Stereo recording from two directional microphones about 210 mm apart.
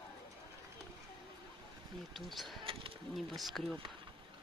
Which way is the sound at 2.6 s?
25° right (ahead or behind).